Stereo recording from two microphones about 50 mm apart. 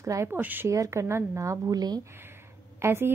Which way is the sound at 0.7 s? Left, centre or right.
Right.